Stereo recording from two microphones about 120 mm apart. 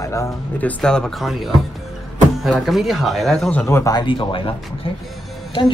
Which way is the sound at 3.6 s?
20° left (ahead or behind).